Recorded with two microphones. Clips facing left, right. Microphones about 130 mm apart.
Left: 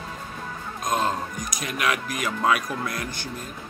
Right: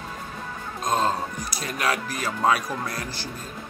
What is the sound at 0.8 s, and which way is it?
Speech, 30° right (ahead or behind).